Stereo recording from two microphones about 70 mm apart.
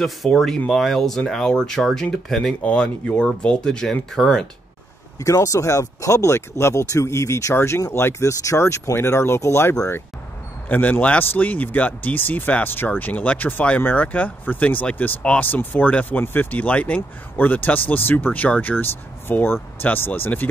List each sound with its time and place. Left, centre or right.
0.0 s speech: centre
2.6 s speech: centre
5.2 s speech: left
10.7 s speech: left